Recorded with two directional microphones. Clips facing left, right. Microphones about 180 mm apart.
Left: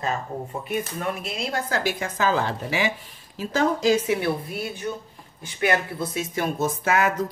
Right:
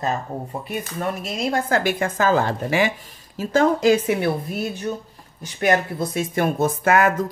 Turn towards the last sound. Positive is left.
turn(degrees=-55)  # may be behind; listen again after turning